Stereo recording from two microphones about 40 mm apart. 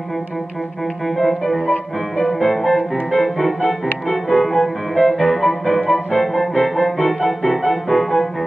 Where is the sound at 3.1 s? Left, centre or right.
Centre.